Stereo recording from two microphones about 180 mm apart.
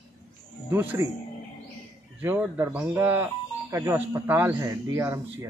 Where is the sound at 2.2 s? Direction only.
10° right (ahead or behind).